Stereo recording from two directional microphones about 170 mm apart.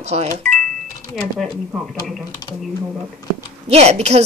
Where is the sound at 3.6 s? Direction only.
40° right (ahead or behind).